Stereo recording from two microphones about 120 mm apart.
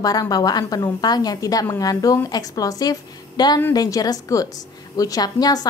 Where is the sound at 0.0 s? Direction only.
30° left (ahead or behind).